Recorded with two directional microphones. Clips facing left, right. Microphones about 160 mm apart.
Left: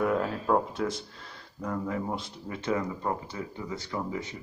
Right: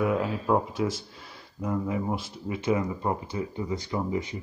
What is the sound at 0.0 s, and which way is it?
Speech, 5° right (ahead or behind).